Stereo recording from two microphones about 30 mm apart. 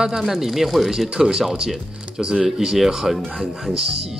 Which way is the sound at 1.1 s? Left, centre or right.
Centre.